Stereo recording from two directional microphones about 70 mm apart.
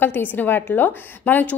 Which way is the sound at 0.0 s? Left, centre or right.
Left.